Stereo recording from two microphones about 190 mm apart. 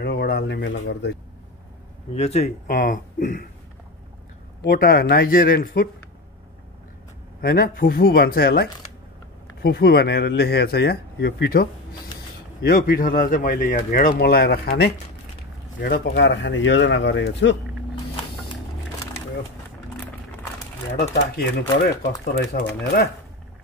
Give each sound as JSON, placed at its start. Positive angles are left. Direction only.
{"t": 0.0, "sound": "speech", "side_deg": 60}
{"t": 2.1, "sound": "speech", "side_deg": 35}
{"t": 4.6, "sound": "speech", "side_deg": 50}
{"t": 7.4, "sound": "speech", "side_deg": 50}
{"t": 21.8, "sound": "speech", "side_deg": 55}